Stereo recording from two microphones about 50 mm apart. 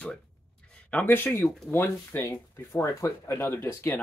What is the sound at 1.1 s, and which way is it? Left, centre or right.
Speech, left.